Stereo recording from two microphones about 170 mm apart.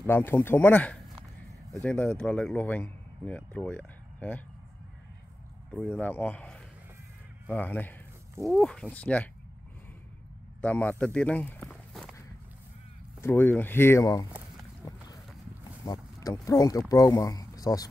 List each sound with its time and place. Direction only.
0.0 s speech: 10° left (ahead or behind)
5.7 s speech: 10° left (ahead or behind)
10.6 s speech: 10° left (ahead or behind)
11.7 s walk: centre (ahead or behind)
13.2 s speech: 10° left (ahead or behind)
15.8 s speech: 20° left (ahead or behind)